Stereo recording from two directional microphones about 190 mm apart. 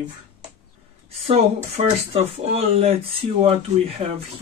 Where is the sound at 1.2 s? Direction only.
35° right (ahead or behind).